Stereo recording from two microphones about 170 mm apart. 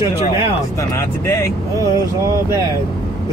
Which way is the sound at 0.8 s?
15° left (ahead or behind).